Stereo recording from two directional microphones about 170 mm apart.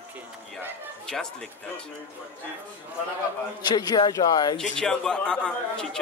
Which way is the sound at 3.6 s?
25° left (ahead or behind).